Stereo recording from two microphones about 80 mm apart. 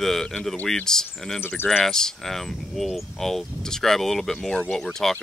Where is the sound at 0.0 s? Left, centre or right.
Centre.